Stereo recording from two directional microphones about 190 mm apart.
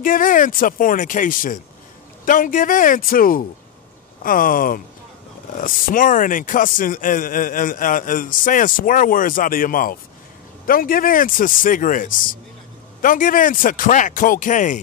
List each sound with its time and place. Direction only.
0.0 s speech: 45° left (ahead or behind)